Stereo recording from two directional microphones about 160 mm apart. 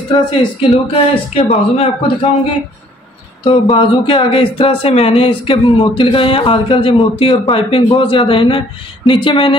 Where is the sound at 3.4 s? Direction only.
35° left (ahead or behind).